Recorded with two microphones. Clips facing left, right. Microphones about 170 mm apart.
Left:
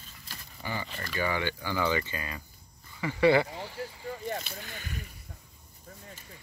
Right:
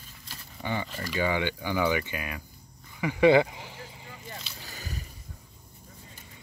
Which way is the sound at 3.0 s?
15° right (ahead or behind).